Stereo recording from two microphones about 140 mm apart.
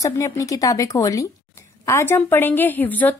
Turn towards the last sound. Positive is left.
turn(degrees=10)  # may be behind; listen again after turning